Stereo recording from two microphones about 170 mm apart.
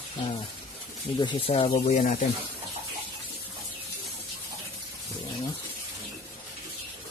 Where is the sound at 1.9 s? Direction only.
45° left (ahead or behind).